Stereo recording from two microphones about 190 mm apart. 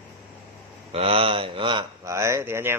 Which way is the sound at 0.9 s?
30° right (ahead or behind).